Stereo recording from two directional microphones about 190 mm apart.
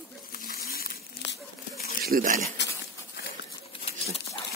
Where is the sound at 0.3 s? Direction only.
50° left (ahead or behind).